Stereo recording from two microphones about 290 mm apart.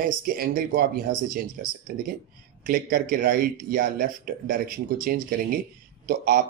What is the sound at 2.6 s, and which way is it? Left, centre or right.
Speech, right.